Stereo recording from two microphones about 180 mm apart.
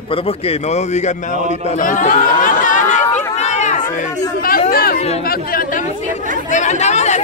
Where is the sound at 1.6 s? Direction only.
45° left (ahead or behind).